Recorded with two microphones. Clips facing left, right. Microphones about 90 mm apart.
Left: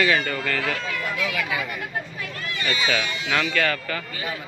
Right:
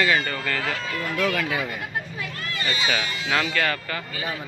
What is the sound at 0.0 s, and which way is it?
Speech, 20° right (ahead or behind).